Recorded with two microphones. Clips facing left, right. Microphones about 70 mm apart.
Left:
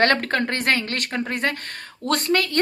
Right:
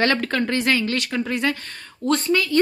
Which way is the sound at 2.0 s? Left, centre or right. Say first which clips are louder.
Right 1 dB; left.